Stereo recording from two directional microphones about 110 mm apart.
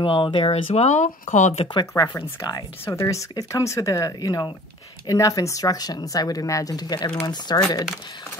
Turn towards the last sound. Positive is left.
turn(degrees=40)  # may be behind; listen again after turning